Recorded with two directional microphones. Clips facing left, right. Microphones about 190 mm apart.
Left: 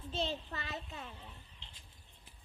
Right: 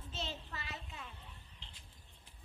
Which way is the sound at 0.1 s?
35° left (ahead or behind).